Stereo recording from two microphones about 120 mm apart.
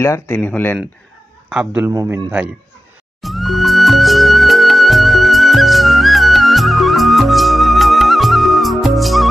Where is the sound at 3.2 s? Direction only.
Centre (ahead or behind).